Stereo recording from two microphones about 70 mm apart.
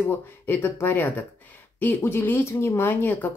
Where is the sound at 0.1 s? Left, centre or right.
Left.